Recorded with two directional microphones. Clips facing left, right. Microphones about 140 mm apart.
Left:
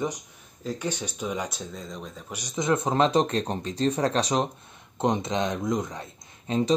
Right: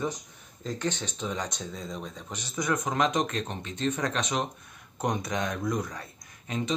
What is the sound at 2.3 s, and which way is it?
Speech, 15° left (ahead or behind).